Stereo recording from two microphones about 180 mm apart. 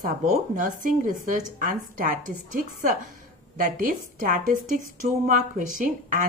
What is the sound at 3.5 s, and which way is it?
A woman's voice, 50° right (ahead or behind).